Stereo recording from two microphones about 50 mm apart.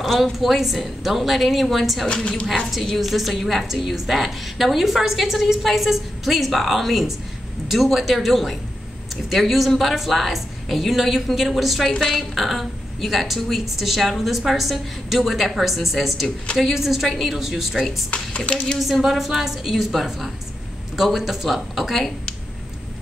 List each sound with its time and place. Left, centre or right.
0.0 s a woman's voice: centre
2.0 s speech: left
2.4 s a woman's voice: centre
18.1 s speech: left
18.8 s a woman's voice: centre